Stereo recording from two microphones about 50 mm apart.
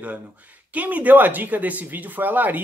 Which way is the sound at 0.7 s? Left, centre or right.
Right.